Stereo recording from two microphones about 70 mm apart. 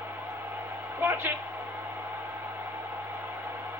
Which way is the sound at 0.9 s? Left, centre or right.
Right.